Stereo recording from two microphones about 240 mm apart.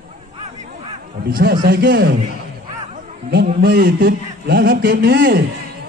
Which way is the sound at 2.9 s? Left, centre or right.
Right.